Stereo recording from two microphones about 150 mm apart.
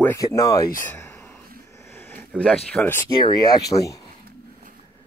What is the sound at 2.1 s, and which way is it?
Speech, 10° left (ahead or behind).